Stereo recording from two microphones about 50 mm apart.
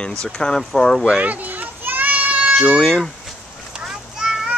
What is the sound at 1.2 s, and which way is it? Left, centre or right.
Children playing, right.